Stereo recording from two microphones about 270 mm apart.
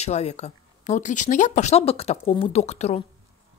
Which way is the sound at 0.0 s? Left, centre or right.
Left.